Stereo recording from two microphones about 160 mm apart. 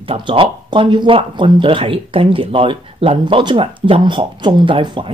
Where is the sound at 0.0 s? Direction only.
35° right (ahead or behind).